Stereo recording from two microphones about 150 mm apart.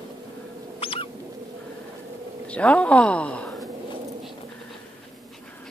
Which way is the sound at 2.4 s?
10° left (ahead or behind).